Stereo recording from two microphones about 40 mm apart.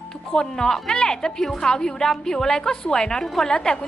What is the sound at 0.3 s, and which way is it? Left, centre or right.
Speech, centre.